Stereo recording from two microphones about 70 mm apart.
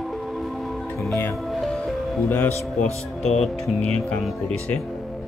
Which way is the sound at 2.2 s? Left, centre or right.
Left.